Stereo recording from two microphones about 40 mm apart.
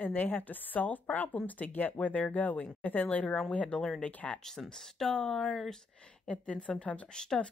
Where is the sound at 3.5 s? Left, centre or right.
Left.